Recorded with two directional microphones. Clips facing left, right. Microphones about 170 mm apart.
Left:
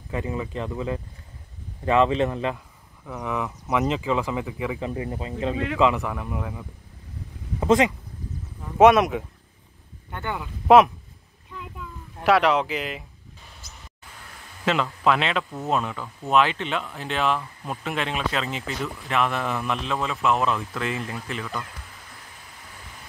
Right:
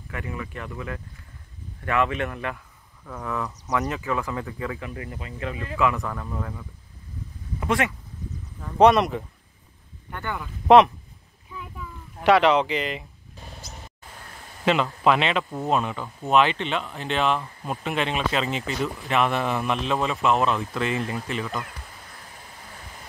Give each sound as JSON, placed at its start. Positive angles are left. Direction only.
{"t": 0.1, "sound": "speech", "side_deg": 25}
{"t": 4.7, "sound": "speech", "side_deg": 25}
{"t": 5.9, "sound": "speech", "side_deg": 15}
{"t": 7.6, "sound": "speech", "side_deg": 20}
{"t": 8.7, "sound": "speech", "side_deg": 0}
{"t": 10.1, "sound": "speech", "side_deg": 20}
{"t": 11.8, "sound": "speech", "side_deg": 0}
{"t": 14.6, "sound": "a man's voice", "side_deg": -5}